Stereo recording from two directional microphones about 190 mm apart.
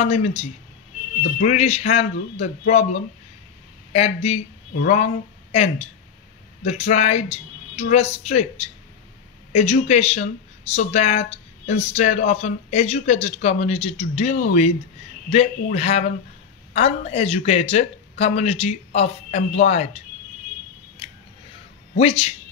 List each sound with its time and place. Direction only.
0.0 s speech: 35° left (ahead or behind)
9.5 s speech: 35° left (ahead or behind)
21.0 s scissors: 25° left (ahead or behind)
21.9 s speech: 30° left (ahead or behind)